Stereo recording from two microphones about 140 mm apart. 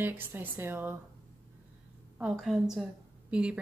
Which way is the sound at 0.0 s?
15° right (ahead or behind).